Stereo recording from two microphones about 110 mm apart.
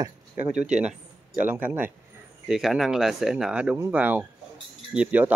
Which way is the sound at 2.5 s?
5° right (ahead or behind).